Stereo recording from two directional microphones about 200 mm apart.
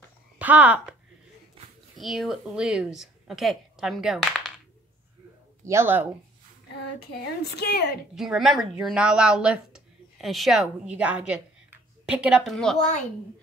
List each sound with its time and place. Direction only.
0.4 s speech: 5° right (ahead or behind)
2.0 s speech: centre (ahead or behind)
5.6 s speech: 15° right (ahead or behind)
7.1 s a woman's voice: 55° left (ahead or behind)
8.1 s a woman's voice: centre (ahead or behind)